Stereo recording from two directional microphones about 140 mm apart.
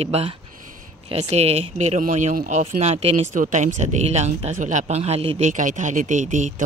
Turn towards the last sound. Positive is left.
turn(degrees=-65)  # may be behind; listen again after turning